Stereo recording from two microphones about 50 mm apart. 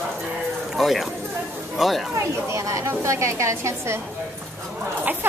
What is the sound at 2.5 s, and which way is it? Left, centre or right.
A woman's voice, right.